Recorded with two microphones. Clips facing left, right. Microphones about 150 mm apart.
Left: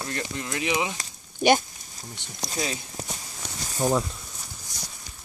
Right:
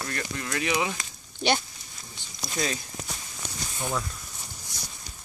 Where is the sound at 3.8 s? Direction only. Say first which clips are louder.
Left 8 dB; 35° left (ahead or behind).